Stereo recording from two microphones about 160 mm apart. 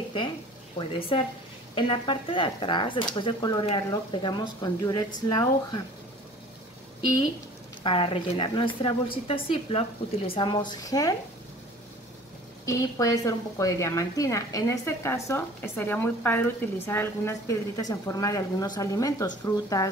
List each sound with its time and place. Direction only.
0.7 s a woman's voice: 35° left (ahead or behind)
7.8 s a woman's voice: 35° left (ahead or behind)
12.6 s a woman's voice: 20° left (ahead or behind)